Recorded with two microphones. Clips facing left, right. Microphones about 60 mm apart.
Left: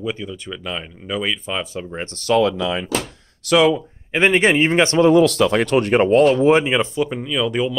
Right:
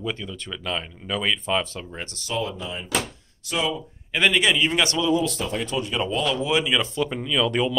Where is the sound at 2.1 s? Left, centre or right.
Left.